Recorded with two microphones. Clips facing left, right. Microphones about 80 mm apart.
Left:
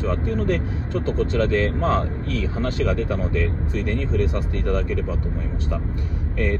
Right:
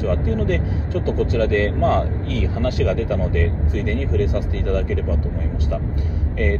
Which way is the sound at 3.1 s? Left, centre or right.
Right.